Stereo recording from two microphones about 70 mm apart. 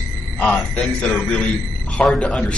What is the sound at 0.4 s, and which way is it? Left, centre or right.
Speech, centre.